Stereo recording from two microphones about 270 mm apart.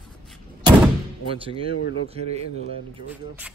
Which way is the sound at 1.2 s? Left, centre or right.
Right.